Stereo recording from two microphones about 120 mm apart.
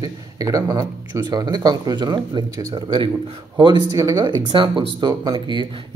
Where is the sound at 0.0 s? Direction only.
30° right (ahead or behind).